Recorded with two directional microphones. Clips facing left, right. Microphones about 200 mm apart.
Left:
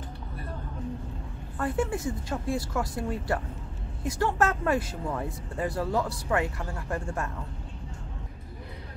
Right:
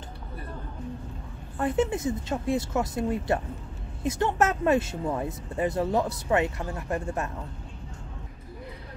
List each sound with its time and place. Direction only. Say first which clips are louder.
1.6 s speech: right 3 dB; 20° right (ahead or behind)